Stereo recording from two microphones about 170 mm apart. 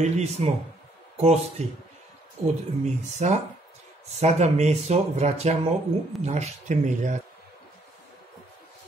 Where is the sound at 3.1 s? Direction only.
40° right (ahead or behind).